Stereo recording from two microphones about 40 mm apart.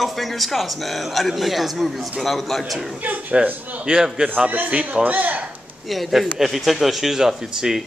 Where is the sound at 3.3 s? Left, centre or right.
Right.